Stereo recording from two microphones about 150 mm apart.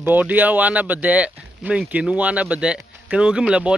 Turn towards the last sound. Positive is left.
turn(degrees=-5)  # may be behind; listen again after turning